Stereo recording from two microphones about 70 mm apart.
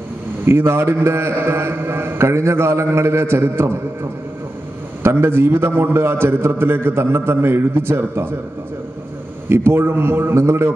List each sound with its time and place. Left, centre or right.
0.5 s a man's voice: right
5.0 s a man's voice: right
9.5 s a man's voice: right